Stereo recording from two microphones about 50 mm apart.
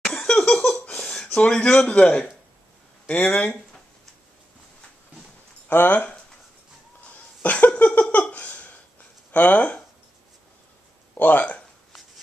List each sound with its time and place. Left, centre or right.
0.0 s laughter: centre
1.0 s a sound: centre
1.4 s a man's voice: left
3.1 s speech: left
5.7 s speech: left
7.1 s a sound: left
9.3 s speech: left
11.1 s speech: left